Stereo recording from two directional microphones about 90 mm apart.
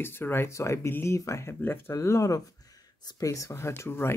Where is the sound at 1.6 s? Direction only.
25° left (ahead or behind).